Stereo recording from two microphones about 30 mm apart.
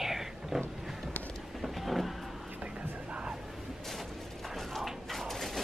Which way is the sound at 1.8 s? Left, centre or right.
Centre.